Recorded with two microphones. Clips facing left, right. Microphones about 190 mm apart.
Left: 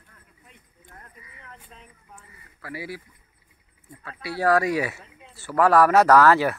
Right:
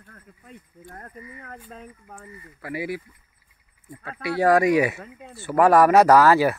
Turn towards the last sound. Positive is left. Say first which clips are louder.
# right 1 dB
turn(degrees=-10)  # may be behind; listen again after turning